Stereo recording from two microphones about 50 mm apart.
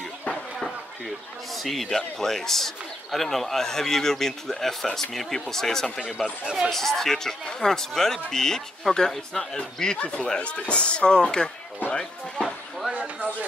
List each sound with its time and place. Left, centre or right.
1.0 s speech: centre
6.4 s speech: centre
6.7 s speech: centre
9.9 s speech: left
11.9 s music: centre
12.9 s a sound: right